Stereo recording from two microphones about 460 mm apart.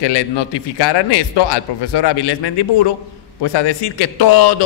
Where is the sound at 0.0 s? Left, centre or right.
Left.